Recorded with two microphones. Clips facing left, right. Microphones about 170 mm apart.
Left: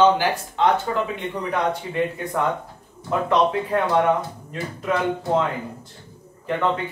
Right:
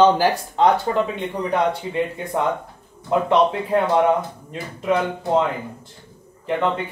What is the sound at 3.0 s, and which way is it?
Speech, 25° right (ahead or behind).